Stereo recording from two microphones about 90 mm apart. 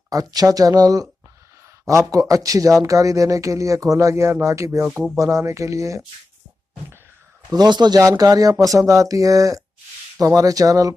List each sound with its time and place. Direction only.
0.1 s speech: 45° right (ahead or behind)
7.5 s speech: 50° right (ahead or behind)
8.0 s speech: 40° right (ahead or behind)